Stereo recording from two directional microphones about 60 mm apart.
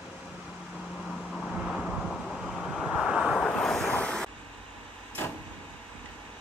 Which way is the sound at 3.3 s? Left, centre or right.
Left.